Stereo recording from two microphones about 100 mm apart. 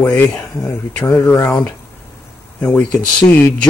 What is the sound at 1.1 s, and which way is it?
Speech, 30° left (ahead or behind).